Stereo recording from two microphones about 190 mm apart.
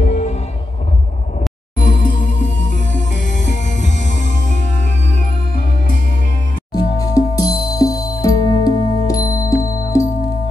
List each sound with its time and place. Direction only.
0.0 s music: 40° left (ahead or behind)
1.8 s music: 45° left (ahead or behind)
2.9 s music: 75° left (ahead or behind)
3.3 s music: 40° left (ahead or behind)
6.7 s music: 20° left (ahead or behind)